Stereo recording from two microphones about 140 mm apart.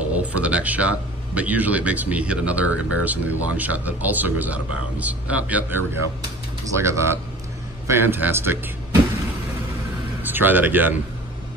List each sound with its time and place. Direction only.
0.1 s speech: 10° right (ahead or behind)
10.2 s speech: 15° right (ahead or behind)